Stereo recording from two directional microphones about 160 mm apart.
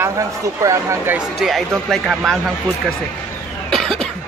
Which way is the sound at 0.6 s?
20° right (ahead or behind).